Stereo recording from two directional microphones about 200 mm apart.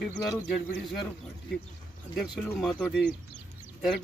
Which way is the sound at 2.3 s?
5° left (ahead or behind).